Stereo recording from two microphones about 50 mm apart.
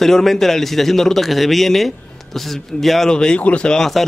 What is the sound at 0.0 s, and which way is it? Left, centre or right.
A man's voice, centre.